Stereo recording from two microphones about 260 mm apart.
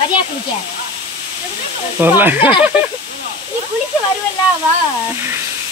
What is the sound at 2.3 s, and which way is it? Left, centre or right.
Speech, centre.